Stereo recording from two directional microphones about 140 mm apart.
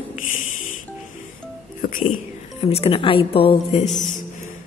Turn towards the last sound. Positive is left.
turn(degrees=0)  # may be behind; listen again after turning